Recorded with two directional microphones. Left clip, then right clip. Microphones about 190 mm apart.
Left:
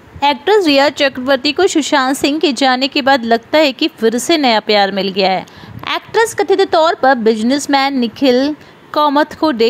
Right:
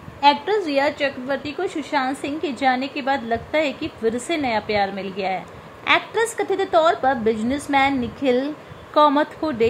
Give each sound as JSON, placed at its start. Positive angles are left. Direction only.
{"t": 0.2, "sound": "a woman's voice", "side_deg": 30}